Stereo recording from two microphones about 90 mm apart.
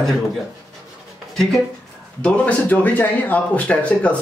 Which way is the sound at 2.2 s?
15° left (ahead or behind).